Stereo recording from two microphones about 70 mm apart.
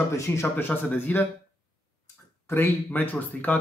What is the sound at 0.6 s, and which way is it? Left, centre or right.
Speech, left.